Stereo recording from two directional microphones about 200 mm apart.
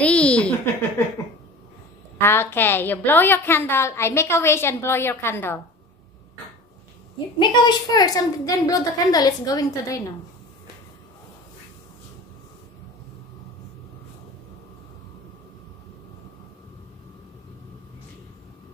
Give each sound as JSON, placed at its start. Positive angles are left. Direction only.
{"t": 0.0, "sound": "a sound", "side_deg": 5}
{"t": 2.1, "sound": "a woman's voice", "side_deg": 10}
{"t": 7.3, "sound": "a woman's voice", "side_deg": 20}